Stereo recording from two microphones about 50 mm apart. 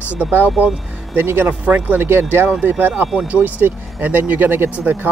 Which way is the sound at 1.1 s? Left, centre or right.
Right.